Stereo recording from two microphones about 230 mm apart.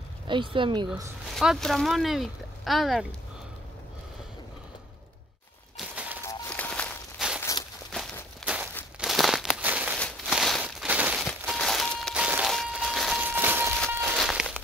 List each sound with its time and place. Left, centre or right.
0.3 s speech: right
1.3 s speech: centre
5.8 s a sound: centre
6.2 s walk: centre
8.7 s crumpling: centre
9.9 s a sound: centre